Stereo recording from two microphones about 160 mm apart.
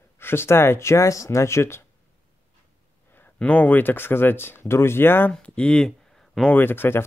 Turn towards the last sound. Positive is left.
turn(degrees=15)  # may be behind; listen again after turning